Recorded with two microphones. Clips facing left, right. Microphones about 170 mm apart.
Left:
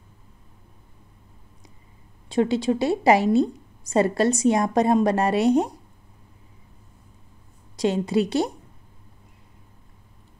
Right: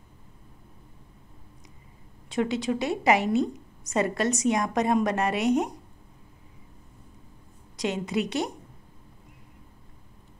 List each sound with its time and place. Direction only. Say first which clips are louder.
2.2 s a woman's voice: left 5 dB; 30° left (ahead or behind)
7.7 s a woman's voice: left 6 dB; 30° left (ahead or behind)